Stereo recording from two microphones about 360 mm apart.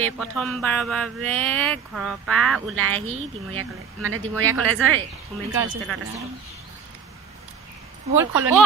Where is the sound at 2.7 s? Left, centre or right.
Right.